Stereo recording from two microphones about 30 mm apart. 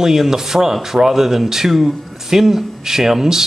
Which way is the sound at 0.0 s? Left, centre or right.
Centre.